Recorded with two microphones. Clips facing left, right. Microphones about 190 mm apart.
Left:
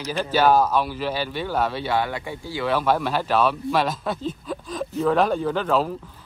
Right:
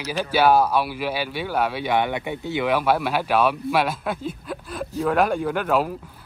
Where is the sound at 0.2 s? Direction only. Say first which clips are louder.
Even; 10° right (ahead or behind).